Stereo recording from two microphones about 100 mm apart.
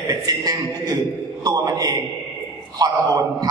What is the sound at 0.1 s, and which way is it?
A man's voice, 40° right (ahead or behind).